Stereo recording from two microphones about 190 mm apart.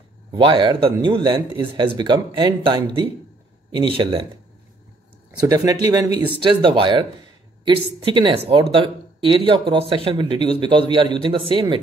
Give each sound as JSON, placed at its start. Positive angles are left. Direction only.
{"t": 0.3, "sound": "speech", "side_deg": -25}
{"t": 5.5, "sound": "speech", "side_deg": -20}